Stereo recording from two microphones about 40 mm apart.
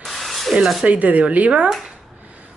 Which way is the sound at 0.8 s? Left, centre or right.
Right.